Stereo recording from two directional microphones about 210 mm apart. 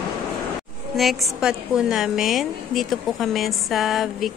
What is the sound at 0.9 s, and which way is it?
A woman's voice, centre (ahead or behind).